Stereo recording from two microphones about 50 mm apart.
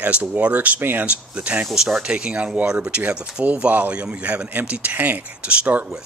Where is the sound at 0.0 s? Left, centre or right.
Right.